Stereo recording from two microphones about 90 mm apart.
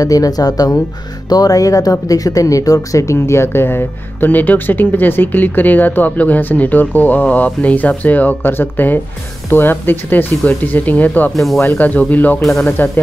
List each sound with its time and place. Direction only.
0.0 s speech: 40° left (ahead or behind); by 11.3 s 20° left (ahead or behind)
11.3 s speech: centre (ahead or behind)
11.6 s speech: 20° left (ahead or behind)
12.4 s speech: centre (ahead or behind)
12.6 s speech: 20° left (ahead or behind)